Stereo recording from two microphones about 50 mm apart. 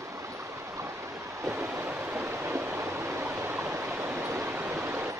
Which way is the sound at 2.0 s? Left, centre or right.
Right.